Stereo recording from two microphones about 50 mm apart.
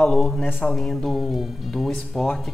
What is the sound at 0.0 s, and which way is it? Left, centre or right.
Speech, centre.